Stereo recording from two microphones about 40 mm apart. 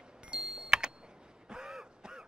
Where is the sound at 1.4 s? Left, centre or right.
Centre.